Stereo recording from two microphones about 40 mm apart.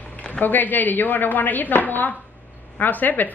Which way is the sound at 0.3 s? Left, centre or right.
Left.